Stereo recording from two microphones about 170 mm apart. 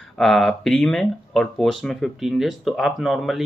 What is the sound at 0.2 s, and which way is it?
Speech, centre (ahead or behind).